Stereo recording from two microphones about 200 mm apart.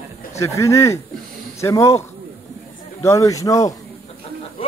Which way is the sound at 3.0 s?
15° left (ahead or behind).